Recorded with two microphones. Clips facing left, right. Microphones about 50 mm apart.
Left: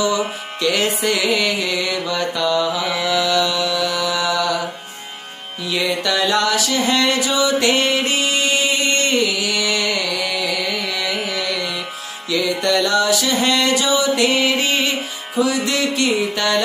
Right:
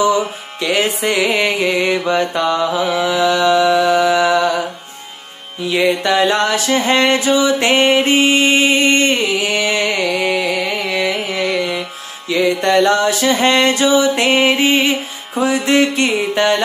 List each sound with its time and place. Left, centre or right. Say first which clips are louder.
0.0 s music: right 4 dB; right
5.6 s music: right 6 dB; right